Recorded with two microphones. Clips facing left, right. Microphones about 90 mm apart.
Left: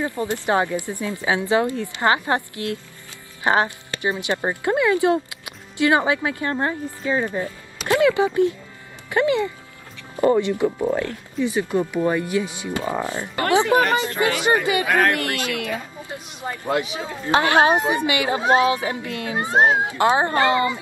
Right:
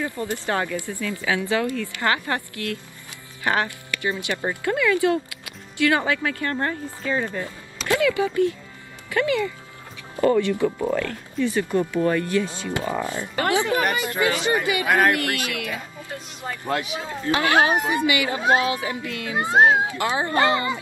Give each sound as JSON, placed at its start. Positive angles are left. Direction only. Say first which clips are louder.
{"t": 0.0, "sound": "speech", "louder": "left 3 dB", "side_deg": 20}
{"t": 14.9, "sound": "speech", "louder": "right 1 dB", "side_deg": -15}
{"t": 15.1, "sound": "speech", "louder": "left 1 dB", "side_deg": 30}
{"t": 16.4, "sound": "speech", "louder": "left 3 dB", "side_deg": 15}
{"t": 17.3, "sound": "speech", "louder": "left 3 dB", "side_deg": 30}